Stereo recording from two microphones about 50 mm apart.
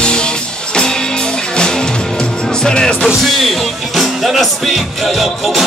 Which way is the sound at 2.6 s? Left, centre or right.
Centre.